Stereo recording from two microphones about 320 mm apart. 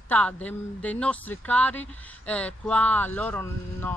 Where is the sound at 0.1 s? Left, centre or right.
Centre.